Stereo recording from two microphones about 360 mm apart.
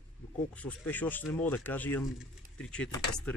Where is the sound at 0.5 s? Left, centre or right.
Centre.